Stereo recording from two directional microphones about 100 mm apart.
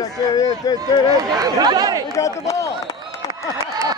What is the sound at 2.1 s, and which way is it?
Speech, 30° left (ahead or behind).